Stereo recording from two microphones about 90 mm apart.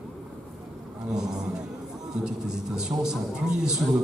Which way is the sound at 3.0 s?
5° right (ahead or behind).